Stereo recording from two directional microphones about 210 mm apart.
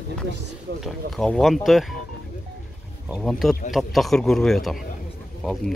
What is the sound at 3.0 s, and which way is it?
Speech, centre (ahead or behind).